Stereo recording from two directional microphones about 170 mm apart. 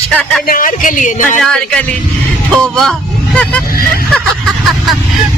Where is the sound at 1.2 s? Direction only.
5° left (ahead or behind).